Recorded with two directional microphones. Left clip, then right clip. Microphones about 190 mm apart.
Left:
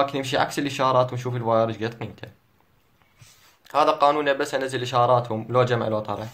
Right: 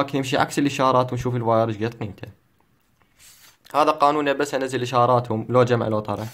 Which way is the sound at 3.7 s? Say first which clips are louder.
Right 1 dB; 35° right (ahead or behind).